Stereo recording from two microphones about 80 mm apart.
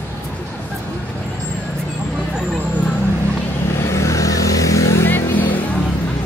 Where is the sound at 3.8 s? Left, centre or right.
Left.